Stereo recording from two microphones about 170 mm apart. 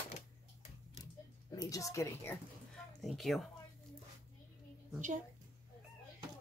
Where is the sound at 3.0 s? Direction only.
Centre (ahead or behind).